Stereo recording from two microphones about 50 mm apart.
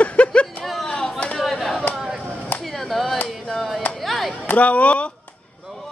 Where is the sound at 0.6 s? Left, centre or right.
Centre.